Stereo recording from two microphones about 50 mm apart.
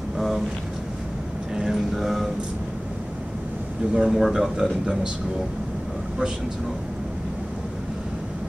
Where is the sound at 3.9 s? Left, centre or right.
Centre.